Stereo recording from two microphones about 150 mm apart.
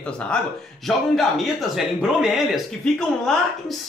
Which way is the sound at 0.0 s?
5° left (ahead or behind).